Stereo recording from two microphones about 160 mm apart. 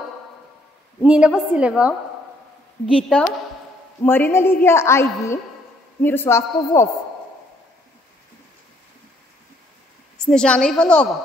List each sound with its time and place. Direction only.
1.0 s a woman's voice: 5° right (ahead or behind)
3.0 s a woman's voice: 5° left (ahead or behind)
10.1 s a woman's voice: 5° left (ahead or behind)